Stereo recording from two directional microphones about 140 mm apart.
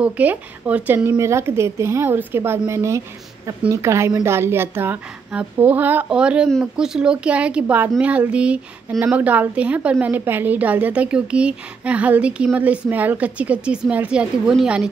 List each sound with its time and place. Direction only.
0.0 s a woman's voice: 10° right (ahead or behind)